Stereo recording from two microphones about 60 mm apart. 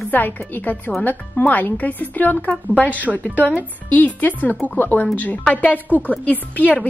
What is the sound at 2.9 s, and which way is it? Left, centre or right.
Speech, right.